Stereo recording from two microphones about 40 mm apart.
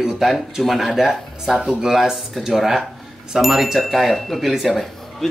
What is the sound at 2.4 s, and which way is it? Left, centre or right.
Speech, centre.